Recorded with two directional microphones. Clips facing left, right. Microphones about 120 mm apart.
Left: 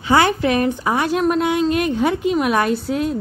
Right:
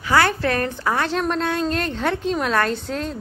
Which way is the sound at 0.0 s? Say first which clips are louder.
Left 3 dB; 20° left (ahead or behind).